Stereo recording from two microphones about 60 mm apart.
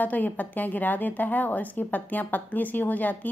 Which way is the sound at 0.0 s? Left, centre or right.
Left.